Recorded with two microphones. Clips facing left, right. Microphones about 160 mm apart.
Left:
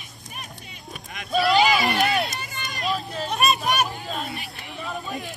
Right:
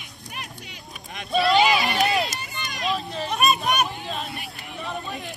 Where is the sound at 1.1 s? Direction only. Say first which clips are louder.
Even; centre (ahead or behind).